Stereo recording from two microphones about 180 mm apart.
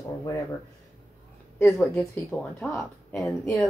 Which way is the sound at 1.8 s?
5° left (ahead or behind).